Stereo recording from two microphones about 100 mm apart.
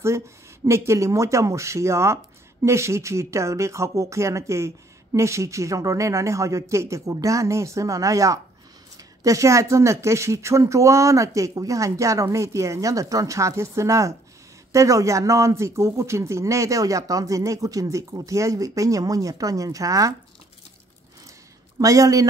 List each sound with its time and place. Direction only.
0.7 s speech: 30° right (ahead or behind)
21.7 s speech: 35° right (ahead or behind)